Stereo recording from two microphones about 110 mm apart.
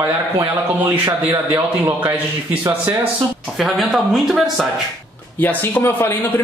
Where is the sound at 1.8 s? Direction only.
15° right (ahead or behind).